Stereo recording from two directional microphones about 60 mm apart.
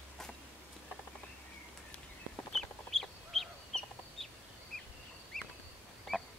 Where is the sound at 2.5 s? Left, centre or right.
Centre.